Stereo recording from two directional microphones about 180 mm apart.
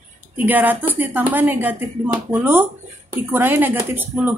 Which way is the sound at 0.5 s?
10° right (ahead or behind).